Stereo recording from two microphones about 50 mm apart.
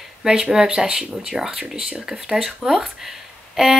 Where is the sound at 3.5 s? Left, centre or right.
Centre.